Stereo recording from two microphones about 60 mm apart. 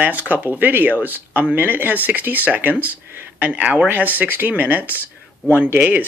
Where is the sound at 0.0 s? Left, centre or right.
Right.